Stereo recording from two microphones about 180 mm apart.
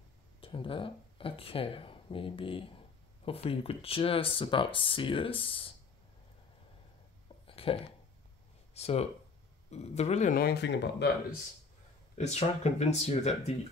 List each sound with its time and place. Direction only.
0.4 s speech: 30° left (ahead or behind)
7.4 s a sound: 30° left (ahead or behind)
8.7 s speech: 35° left (ahead or behind); by 11.1 s 70° left (ahead or behind)
12.2 s speech: 40° left (ahead or behind)